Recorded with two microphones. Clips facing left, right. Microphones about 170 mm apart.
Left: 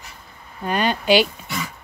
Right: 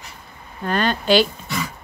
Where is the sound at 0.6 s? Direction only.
10° left (ahead or behind).